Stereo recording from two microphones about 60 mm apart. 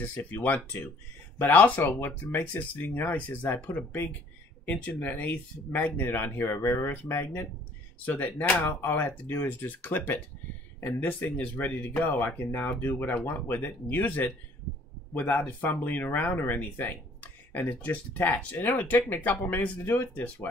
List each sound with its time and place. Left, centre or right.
0.0 s speech: left
8.0 s speech: left